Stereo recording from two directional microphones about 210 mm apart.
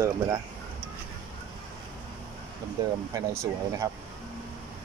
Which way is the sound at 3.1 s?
15° right (ahead or behind).